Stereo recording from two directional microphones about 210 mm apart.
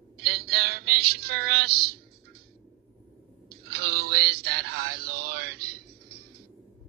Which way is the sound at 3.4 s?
50° right (ahead or behind).